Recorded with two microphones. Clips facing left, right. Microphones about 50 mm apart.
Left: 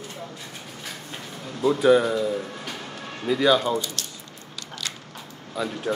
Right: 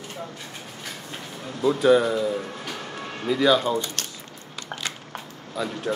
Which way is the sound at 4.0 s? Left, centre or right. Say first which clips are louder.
Right 2 dB; right.